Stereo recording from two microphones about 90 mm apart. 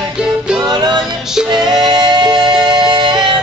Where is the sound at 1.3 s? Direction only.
5° right (ahead or behind).